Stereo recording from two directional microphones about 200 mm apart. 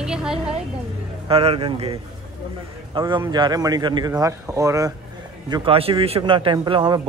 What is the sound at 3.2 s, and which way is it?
Speech, 20° right (ahead or behind).